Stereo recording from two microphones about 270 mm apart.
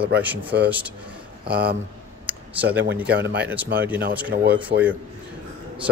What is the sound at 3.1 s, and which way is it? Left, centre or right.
Speech, right.